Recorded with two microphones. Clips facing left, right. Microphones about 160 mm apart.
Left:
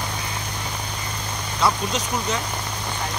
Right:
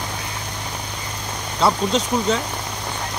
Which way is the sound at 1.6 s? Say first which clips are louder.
Right 4 dB; 25° right (ahead or behind).